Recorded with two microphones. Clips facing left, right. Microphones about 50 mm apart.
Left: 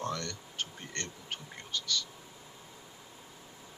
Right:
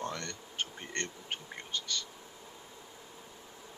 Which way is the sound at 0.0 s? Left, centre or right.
Right.